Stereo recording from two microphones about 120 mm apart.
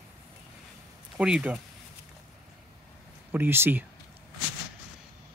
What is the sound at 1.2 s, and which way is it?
Speech, 10° right (ahead or behind).